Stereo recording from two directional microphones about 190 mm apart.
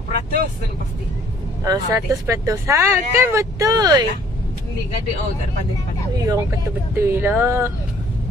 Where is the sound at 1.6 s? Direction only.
20° right (ahead or behind).